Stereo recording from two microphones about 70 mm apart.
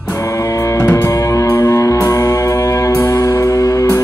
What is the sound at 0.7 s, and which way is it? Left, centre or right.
Music, left.